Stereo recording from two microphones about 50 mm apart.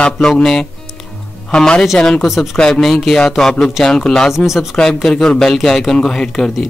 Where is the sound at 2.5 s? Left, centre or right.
Centre.